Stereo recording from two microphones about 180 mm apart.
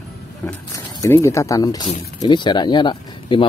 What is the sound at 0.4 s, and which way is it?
Speech, 10° left (ahead or behind).